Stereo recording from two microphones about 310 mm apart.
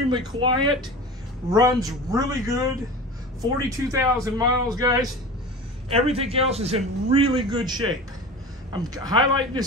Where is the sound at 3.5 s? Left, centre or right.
Centre.